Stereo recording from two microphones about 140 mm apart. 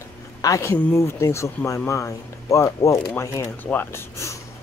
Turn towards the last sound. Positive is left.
turn(degrees=20)  # may be behind; listen again after turning